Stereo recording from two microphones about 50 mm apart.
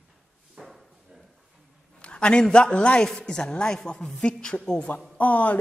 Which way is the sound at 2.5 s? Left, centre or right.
Left.